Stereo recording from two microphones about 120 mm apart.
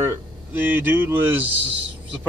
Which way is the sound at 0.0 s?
20° right (ahead or behind).